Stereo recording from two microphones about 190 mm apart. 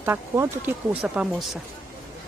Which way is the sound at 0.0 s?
10° right (ahead or behind).